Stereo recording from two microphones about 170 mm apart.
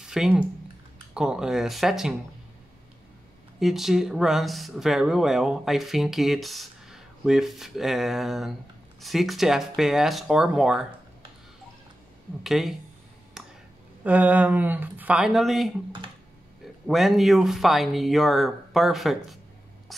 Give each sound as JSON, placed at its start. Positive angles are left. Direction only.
{"t": 0.0, "sound": "a sound", "side_deg": -5}
{"t": 1.1, "sound": "speech", "side_deg": -5}
{"t": 3.5, "sound": "speech", "side_deg": 0}
{"t": 12.4, "sound": "speech", "side_deg": 0}
{"t": 14.0, "sound": "speech", "side_deg": -10}
{"t": 16.8, "sound": "speech", "side_deg": 0}
{"t": 19.9, "sound": "a sound", "side_deg": 0}